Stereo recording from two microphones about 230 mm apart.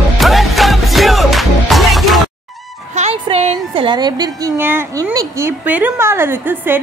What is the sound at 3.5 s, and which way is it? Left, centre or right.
A woman's voice, centre.